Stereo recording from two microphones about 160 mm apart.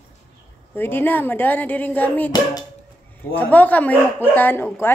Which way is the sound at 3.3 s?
10° left (ahead or behind).